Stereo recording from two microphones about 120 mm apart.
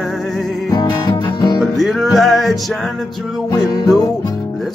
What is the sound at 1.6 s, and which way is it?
Music, centre (ahead or behind).